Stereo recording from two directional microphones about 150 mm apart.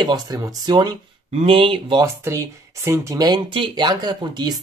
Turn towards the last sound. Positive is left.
turn(degrees=-30)  # may be behind; listen again after turning